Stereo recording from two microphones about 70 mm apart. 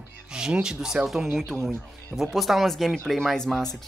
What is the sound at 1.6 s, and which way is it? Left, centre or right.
Speech, right.